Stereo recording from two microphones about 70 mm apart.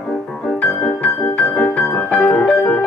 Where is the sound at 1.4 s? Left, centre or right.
Centre.